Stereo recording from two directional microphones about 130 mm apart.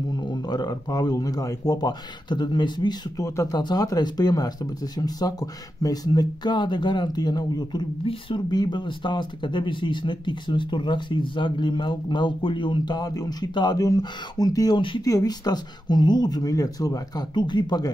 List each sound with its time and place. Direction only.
0.1 s speech: 35° left (ahead or behind)
14.8 s speech: 40° left (ahead or behind)
15.0 s speech: 30° left (ahead or behind)